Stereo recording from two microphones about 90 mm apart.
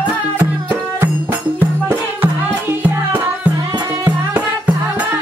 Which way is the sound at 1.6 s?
25° right (ahead or behind).